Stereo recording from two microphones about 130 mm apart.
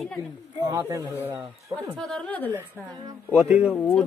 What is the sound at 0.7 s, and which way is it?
Speech, 25° right (ahead or behind).